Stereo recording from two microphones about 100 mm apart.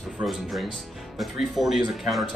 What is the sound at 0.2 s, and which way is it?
Speech, centre (ahead or behind).